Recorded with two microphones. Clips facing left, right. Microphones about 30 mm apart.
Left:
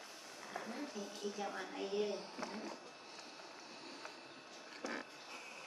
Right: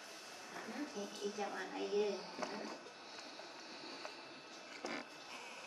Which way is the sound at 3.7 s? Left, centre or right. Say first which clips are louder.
Right 2 dB; centre.